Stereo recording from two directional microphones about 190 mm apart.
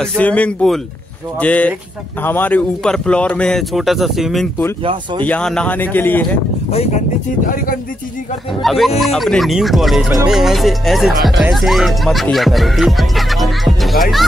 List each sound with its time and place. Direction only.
0.0 s speech: 5° left (ahead or behind)
6.7 s speech: 35° left (ahead or behind)
7.4 s speech: 45° left (ahead or behind)
8.6 s speech: centre (ahead or behind)